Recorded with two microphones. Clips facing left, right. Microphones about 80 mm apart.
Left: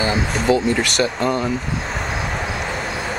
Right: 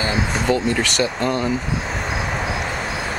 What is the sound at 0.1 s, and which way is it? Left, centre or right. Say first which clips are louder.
Speech: left 2 dB; centre.